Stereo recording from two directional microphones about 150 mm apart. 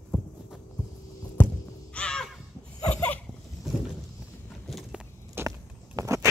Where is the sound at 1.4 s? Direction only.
15° left (ahead or behind).